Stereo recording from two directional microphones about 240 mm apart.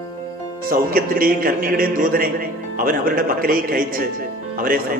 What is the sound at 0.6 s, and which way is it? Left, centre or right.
A man's voice, right.